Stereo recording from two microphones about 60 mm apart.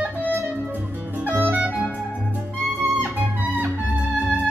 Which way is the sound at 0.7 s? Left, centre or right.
Right.